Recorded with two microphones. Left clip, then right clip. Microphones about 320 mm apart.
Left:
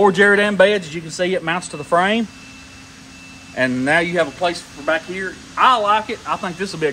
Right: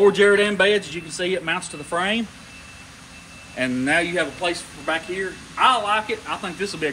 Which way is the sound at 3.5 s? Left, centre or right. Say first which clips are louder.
Left 4 dB; left.